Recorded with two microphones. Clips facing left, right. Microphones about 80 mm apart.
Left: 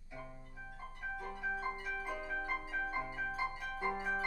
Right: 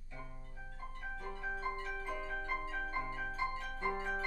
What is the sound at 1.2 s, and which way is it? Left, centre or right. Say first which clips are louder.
Pizzicato: left 1 dB; centre.